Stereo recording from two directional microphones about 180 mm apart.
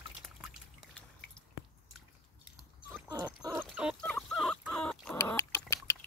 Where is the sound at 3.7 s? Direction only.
5° right (ahead or behind).